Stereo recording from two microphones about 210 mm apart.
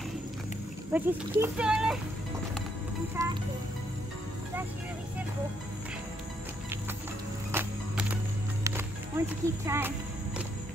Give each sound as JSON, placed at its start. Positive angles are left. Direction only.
{"t": 0.9, "sound": "speech", "side_deg": -10}
{"t": 3.2, "sound": "speech", "side_deg": -15}
{"t": 7.5, "sound": "music", "side_deg": -5}